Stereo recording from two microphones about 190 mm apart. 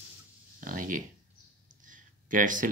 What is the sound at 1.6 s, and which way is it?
Clicking, 45° right (ahead or behind).